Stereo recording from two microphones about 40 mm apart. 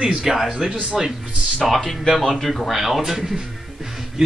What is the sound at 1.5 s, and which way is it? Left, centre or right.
A man's voice, centre.